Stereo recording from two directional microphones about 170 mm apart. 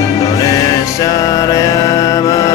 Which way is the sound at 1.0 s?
20° left (ahead or behind).